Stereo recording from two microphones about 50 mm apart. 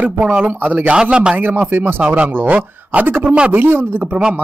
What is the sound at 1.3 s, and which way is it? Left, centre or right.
Speech, right.